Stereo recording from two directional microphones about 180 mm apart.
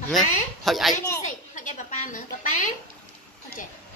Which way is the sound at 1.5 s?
45° left (ahead or behind).